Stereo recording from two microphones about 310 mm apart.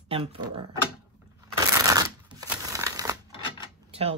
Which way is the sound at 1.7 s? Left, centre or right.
Centre.